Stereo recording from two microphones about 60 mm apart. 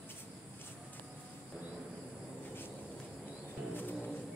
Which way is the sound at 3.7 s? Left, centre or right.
Left.